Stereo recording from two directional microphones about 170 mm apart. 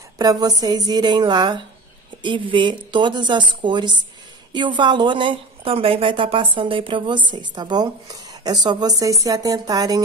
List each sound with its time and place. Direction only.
0.2 s a woman's voice: 20° right (ahead or behind)